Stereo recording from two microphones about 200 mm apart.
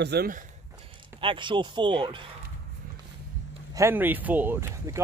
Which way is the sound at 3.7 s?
15° right (ahead or behind).